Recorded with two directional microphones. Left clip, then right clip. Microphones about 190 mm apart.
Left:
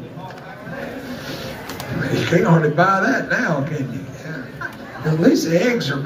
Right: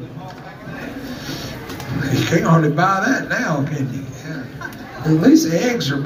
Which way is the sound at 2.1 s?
25° right (ahead or behind).